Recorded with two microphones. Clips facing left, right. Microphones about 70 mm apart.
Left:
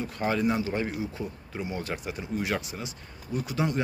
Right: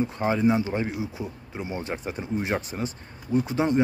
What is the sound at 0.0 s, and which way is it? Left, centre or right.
Speech, right.